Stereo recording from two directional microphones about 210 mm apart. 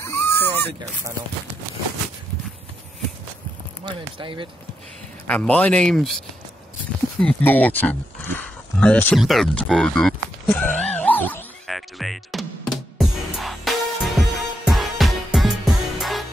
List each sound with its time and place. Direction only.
0.0 s cat: 10° left (ahead or behind)
3.8 s speech: 25° right (ahead or behind)
5.2 s speech: 5° left (ahead or behind)
10.5 s music: 5° left (ahead or behind)